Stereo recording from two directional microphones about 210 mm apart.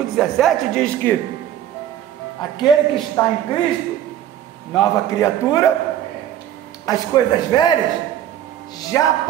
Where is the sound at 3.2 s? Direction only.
15° left (ahead or behind).